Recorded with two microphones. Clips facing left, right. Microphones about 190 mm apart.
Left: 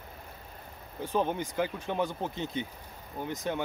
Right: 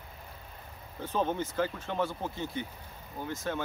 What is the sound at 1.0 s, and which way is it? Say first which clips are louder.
Speech: left 1 dB; 15° left (ahead or behind).